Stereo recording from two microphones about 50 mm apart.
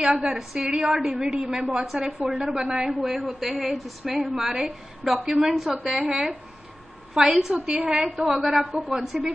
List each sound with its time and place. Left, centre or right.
0.0 s a woman's voice: centre
2.0 s a woman's voice: right
2.4 s a woman's voice: centre
8.3 s a woman's voice: centre